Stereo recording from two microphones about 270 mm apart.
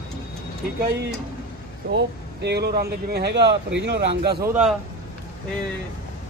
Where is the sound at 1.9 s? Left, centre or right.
Right.